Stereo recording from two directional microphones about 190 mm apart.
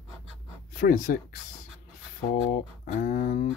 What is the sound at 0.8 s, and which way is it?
Speech, 45° left (ahead or behind).